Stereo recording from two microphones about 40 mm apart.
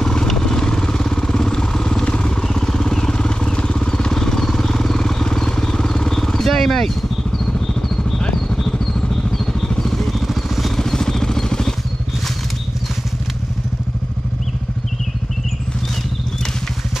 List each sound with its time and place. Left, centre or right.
0.0 s vehicle: centre
2.0 s vehicle: left
2.4 s vehicle: centre
7.6 s a sound: centre
9.5 s vehicle: centre
10.8 s vehicle: centre